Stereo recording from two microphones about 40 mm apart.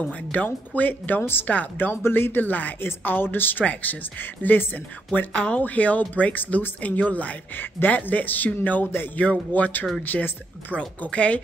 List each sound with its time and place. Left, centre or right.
0.0 s speech: left
1.5 s speech: left
2.0 s a woman's voice: left
3.6 s speech: left
5.3 s speech: left
5.6 s speech: left
11.0 s speech: left